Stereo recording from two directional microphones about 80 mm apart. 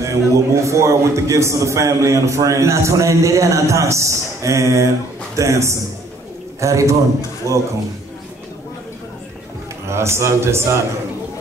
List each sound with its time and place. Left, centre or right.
0.0 s a man's voice: right
9.8 s a man's voice: right